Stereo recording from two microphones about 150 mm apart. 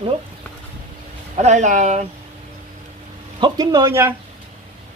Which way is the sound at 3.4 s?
25° right (ahead or behind).